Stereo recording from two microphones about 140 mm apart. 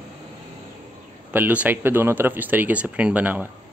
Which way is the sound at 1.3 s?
10° right (ahead or behind).